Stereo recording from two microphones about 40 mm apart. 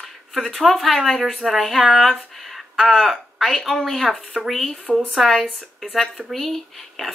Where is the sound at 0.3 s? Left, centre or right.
Centre.